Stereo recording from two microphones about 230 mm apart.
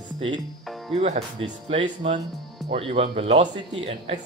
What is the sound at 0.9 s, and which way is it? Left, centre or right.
Speech, right.